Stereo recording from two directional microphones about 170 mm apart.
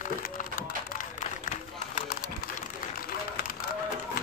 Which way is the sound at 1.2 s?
45° left (ahead or behind).